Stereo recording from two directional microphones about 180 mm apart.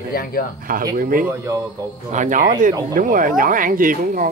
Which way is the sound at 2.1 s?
45° right (ahead or behind).